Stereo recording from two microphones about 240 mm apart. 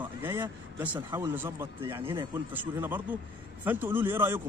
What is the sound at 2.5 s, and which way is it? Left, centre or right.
Speech, centre.